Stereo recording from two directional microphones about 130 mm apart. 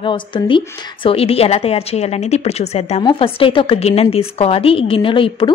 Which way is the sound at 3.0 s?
45° left (ahead or behind).